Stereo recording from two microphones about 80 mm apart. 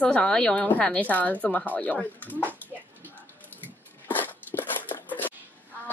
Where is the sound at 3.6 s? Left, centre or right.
Left.